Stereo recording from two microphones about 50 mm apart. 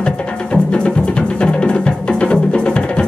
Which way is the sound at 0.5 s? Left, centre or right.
Left.